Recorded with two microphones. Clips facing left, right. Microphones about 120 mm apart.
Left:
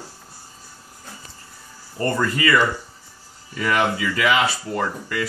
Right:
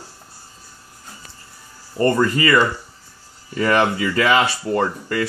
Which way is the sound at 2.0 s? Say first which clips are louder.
Right 5 dB; 25° right (ahead or behind).